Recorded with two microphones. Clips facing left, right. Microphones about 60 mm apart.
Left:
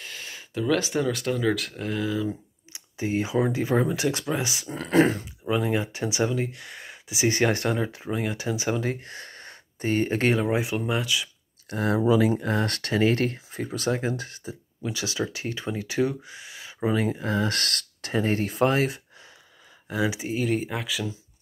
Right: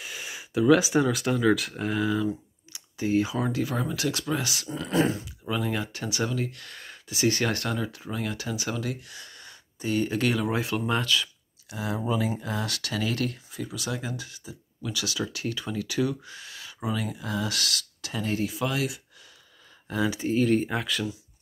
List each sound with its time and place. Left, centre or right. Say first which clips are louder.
0.0 s speech: right 1 dB; centre
2.7 s a sound: right 2 dB; left
3.5 s speech: left 5 dB; left
4.6 s speech: left 5 dB; left
5.5 s speech: left 4 dB; left
9.0 s speech: left 5 dB; left
10.9 s speech: right 1 dB; centre
11.7 s speech: left 7 dB; left
16.8 s speech: left 6 dB; left
19.9 s speech: even; centre